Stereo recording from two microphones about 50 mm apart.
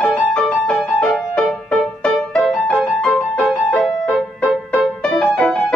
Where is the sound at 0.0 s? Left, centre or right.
Centre.